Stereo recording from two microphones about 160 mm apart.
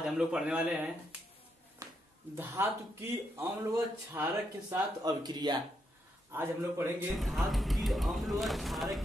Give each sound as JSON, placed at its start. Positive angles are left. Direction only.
{"t": 0.0, "sound": "speech", "side_deg": -5}
{"t": 1.8, "sound": "a sound", "side_deg": -25}
{"t": 2.3, "sound": "a man's voice", "side_deg": -15}
{"t": 5.0, "sound": "speech", "side_deg": -25}
{"t": 6.3, "sound": "a man's voice", "side_deg": -15}
{"t": 7.2, "sound": "speech", "side_deg": 0}